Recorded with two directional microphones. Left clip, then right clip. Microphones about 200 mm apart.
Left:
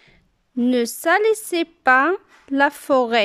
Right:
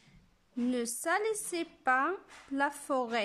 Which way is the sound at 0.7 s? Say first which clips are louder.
Left 14 dB; 45° left (ahead or behind).